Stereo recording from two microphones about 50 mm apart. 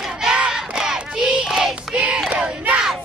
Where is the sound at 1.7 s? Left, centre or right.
Right.